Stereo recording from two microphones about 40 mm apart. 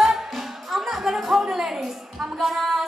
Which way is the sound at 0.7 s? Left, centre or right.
Centre.